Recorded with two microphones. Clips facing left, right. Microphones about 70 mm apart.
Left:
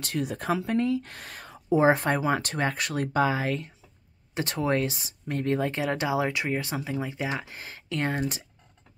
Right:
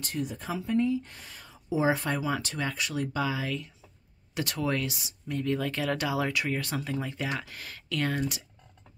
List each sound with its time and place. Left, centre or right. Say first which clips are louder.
0.0 s speech: left 4 dB; left
4.3 s speech: left 3 dB; left
5.7 s speech: left 2 dB; left